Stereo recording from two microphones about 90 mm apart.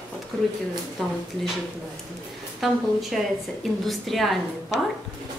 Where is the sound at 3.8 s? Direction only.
Centre (ahead or behind).